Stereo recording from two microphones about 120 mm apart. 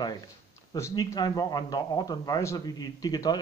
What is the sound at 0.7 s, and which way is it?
A man's voice, 25° left (ahead or behind).